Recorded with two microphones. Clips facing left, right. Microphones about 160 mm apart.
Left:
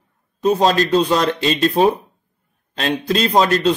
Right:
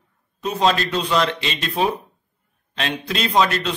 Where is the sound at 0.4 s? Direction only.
40° left (ahead or behind).